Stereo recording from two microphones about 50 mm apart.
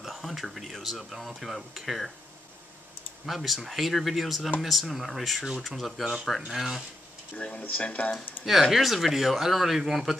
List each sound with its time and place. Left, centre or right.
0.0 s speech: centre
3.3 s speech: centre
7.3 s speech: left
8.5 s speech: centre